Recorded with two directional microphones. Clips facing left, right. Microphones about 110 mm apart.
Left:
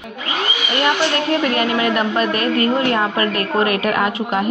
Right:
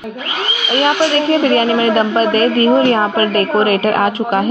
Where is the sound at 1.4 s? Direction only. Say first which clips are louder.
Right 5 dB; 40° right (ahead or behind).